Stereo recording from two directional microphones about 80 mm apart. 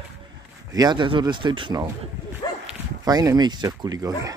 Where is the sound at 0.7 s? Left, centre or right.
Right.